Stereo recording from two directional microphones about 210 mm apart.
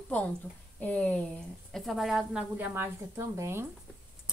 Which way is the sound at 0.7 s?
5° left (ahead or behind).